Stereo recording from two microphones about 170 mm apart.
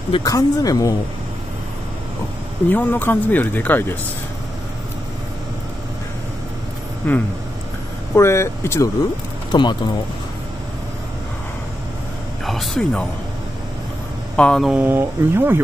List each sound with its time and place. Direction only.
0.1 s speech: 20° left (ahead or behind)
2.7 s speech: 10° left (ahead or behind)
7.0 s speech: 10° left (ahead or behind)
9.5 s speech: 25° left (ahead or behind)
12.4 s speech: centre (ahead or behind)
14.3 s speech: 5° left (ahead or behind); by 15.6 s 15° right (ahead or behind)